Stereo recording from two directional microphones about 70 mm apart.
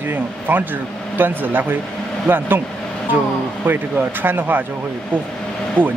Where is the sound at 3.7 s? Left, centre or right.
Right.